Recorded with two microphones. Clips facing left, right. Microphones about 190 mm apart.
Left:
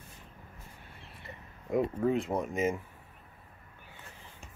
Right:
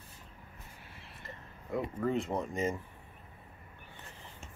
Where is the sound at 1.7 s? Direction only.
15° left (ahead or behind).